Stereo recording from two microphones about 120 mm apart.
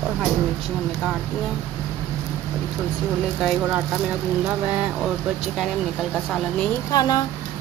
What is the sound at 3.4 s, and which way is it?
Speech, 5° right (ahead or behind).